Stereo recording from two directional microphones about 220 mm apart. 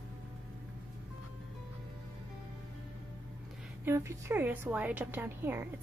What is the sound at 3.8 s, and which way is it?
A woman's voice, 10° right (ahead or behind).